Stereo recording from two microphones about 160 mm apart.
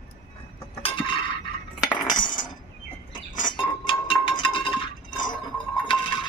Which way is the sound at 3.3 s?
30° left (ahead or behind).